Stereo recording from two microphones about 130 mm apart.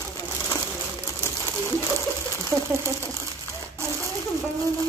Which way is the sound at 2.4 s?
20° right (ahead or behind).